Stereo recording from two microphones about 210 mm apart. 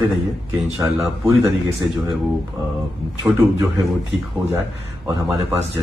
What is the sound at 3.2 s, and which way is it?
Speech, 10° right (ahead or behind).